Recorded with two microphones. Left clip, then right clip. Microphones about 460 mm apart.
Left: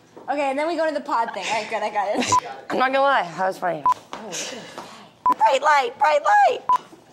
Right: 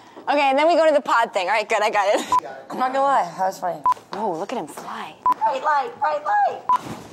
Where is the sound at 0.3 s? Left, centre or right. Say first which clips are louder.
Right 6 dB; right.